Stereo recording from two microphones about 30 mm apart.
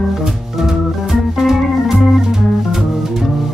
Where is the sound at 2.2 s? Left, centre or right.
Centre.